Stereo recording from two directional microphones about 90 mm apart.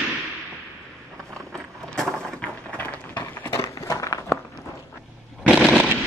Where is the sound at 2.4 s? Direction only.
15° left (ahead or behind).